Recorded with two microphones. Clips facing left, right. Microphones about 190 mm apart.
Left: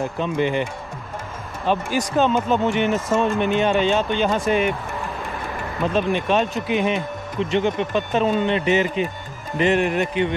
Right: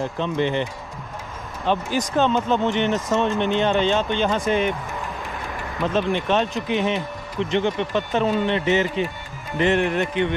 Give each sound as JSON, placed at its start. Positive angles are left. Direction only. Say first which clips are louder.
{"t": 0.0, "sound": "speech", "louder": "left 1 dB", "side_deg": 15}
{"t": 1.7, "sound": "speech", "louder": "left 1 dB", "side_deg": 10}
{"t": 5.8, "sound": "speech", "louder": "left 1 dB", "side_deg": 10}